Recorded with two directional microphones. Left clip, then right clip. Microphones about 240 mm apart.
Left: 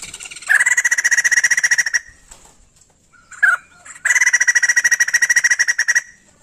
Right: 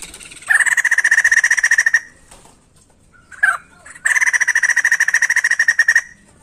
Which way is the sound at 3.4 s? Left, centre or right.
Centre.